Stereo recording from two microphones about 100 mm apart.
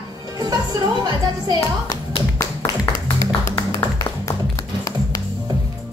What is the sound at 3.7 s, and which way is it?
Music, 40° left (ahead or behind).